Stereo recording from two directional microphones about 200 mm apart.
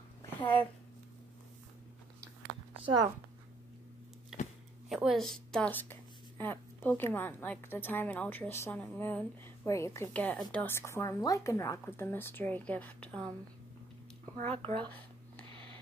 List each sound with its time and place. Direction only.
2.8 s a woman's voice: 20° right (ahead or behind)
4.3 s a sound: 5° right (ahead or behind)
4.8 s a woman's voice: centre (ahead or behind)
14.3 s speech: 30° right (ahead or behind)